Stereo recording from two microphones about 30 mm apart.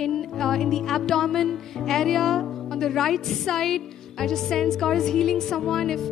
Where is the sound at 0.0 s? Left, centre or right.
Centre.